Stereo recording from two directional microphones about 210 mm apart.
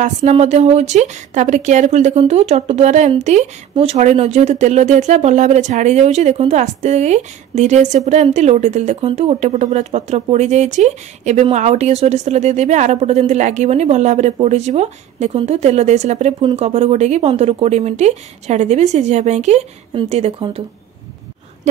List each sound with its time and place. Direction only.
0.0 s a woman's voice: 35° right (ahead or behind)